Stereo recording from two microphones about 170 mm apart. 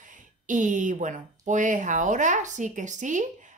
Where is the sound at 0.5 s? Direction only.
50° right (ahead or behind).